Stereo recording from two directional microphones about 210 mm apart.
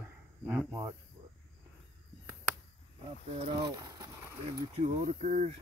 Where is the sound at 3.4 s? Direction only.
20° right (ahead or behind).